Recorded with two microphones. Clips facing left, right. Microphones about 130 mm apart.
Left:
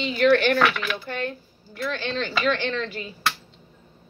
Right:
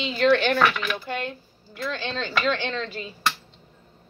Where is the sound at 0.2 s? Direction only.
30° right (ahead or behind).